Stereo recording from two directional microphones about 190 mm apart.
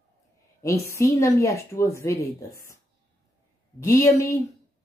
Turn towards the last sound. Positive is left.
turn(degrees=15)  # may be behind; listen again after turning